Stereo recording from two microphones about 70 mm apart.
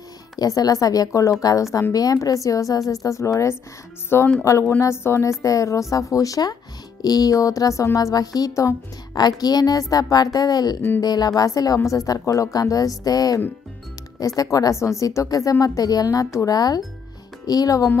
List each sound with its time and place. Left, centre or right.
0.4 s a woman's voice: left
5.4 s a woman's voice: left
9.1 s a woman's voice: left
16.5 s a woman's voice: left